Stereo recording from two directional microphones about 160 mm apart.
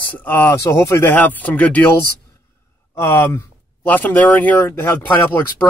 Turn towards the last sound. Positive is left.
turn(degrees=15)  # may be behind; listen again after turning